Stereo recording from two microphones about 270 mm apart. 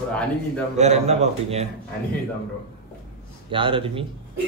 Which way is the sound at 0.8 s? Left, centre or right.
Right.